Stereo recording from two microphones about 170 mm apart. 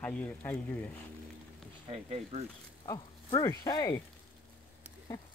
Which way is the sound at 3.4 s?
25° left (ahead or behind).